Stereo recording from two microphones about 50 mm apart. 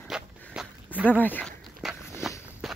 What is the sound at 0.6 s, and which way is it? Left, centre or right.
Walk, centre.